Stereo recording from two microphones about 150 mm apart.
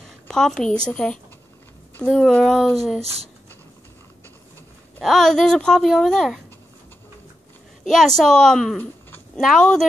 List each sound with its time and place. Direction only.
0.3 s speech: 5° left (ahead or behind)
3.0 s speech: 45° right (ahead or behind)
5.0 s speech: centre (ahead or behind)
7.9 s speech: centre (ahead or behind)